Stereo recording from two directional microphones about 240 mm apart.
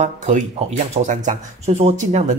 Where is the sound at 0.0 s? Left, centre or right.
Right.